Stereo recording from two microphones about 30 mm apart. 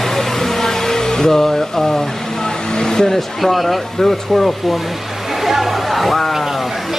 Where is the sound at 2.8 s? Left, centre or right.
Centre.